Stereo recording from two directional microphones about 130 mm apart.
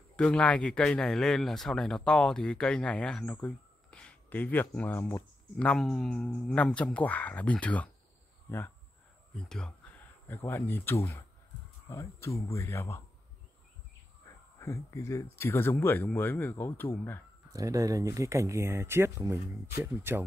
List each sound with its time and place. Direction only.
0.1 s speech: 5° left (ahead or behind)
9.3 s speech: 5° left (ahead or behind)
10.2 s speech: 15° left (ahead or behind)
14.3 s a sound: 20° left (ahead or behind)
14.6 s speech: 25° left (ahead or behind)
17.5 s speech: 25° right (ahead or behind)